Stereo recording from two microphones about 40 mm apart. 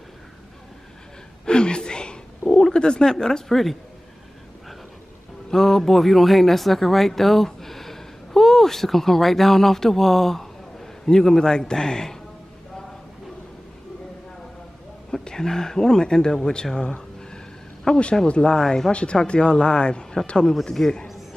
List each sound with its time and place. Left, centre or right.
1.4 s a sound: left
2.4 s cat: centre
2.7 s speech: left
5.5 s speech: centre
15.2 s speech: centre
18.9 s speech: left